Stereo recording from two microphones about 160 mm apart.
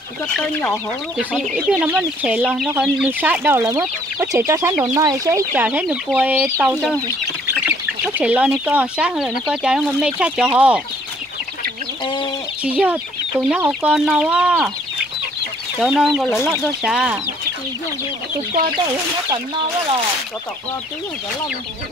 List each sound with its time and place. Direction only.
0.3 s speech: 5° left (ahead or behind)
12.6 s speech: 10° right (ahead or behind)
15.8 s speech: centre (ahead or behind)